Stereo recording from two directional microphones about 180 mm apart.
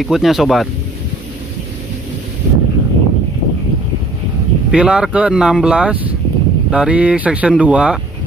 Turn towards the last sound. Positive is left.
turn(degrees=-5)  # may be behind; listen again after turning